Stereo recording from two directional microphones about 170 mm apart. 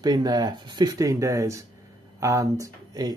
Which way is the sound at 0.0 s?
25° right (ahead or behind).